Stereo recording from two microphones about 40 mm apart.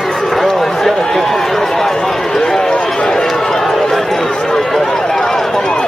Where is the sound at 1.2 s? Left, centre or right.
Centre.